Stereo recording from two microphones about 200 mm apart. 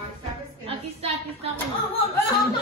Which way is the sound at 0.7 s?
30° right (ahead or behind).